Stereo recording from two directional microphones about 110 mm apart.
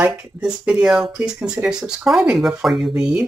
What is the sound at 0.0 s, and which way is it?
Speech, 10° right (ahead or behind).